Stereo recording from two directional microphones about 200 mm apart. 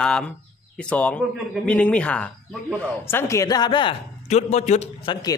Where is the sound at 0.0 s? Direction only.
5° left (ahead or behind).